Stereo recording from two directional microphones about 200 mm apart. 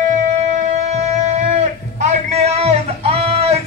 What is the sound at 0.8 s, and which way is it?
Music, 35° right (ahead or behind).